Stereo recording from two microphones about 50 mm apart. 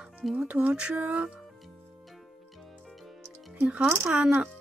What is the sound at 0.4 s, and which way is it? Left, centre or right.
Speech, right.